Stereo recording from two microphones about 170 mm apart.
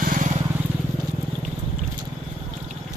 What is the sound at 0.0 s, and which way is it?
Vehicle, 50° right (ahead or behind).